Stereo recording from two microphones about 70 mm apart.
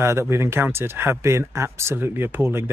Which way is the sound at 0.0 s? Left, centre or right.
Right.